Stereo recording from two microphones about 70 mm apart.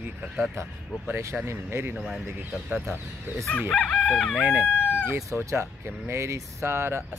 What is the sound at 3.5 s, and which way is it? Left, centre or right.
Chicken, left.